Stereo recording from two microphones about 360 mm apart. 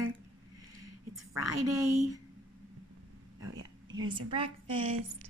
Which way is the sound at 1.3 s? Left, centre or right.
Right.